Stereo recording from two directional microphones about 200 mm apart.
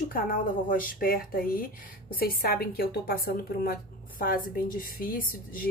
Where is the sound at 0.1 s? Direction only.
45° left (ahead or behind).